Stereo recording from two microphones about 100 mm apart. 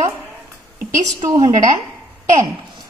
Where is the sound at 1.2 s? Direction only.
40° right (ahead or behind).